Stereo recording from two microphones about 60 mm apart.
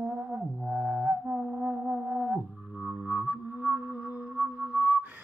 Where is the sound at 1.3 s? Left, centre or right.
Centre.